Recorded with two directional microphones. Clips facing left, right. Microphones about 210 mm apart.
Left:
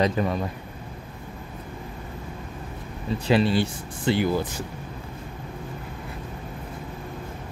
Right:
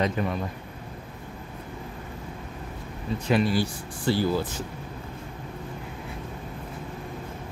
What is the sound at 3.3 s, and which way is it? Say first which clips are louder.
Speech: left 2 dB; 30° left (ahead or behind).